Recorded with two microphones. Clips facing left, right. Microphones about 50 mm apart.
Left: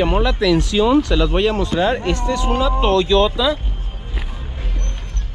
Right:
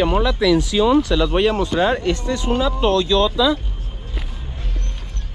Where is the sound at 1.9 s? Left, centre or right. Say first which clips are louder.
Left 1 dB; left.